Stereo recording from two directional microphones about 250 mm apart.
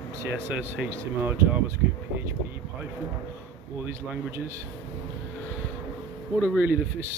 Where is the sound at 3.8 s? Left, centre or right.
Centre.